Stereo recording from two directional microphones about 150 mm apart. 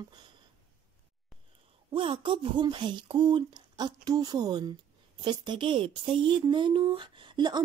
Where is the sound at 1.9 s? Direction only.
35° right (ahead or behind).